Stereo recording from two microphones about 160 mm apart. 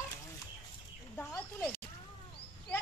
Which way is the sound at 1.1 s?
10° left (ahead or behind).